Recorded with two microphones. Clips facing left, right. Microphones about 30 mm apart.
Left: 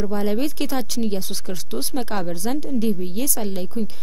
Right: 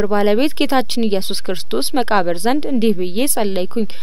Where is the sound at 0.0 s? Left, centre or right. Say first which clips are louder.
Right 8 dB; right.